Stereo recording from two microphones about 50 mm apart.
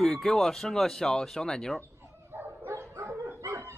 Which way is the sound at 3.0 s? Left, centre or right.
Right.